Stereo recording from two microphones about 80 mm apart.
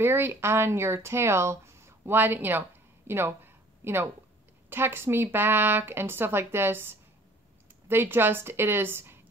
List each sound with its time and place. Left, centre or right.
0.0 s speech: right